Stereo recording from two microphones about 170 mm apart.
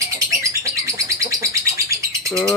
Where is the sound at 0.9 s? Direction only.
20° right (ahead or behind).